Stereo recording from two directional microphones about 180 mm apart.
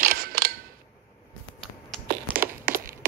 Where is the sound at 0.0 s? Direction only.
55° right (ahead or behind).